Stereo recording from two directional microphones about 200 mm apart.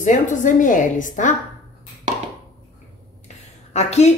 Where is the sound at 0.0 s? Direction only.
40° left (ahead or behind).